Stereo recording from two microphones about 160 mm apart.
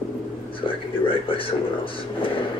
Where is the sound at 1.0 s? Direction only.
35° left (ahead or behind).